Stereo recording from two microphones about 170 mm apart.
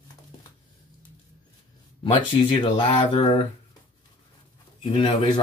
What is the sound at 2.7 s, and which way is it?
Speech, 30° left (ahead or behind).